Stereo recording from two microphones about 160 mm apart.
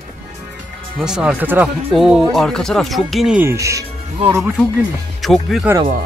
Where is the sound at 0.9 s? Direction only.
5° right (ahead or behind).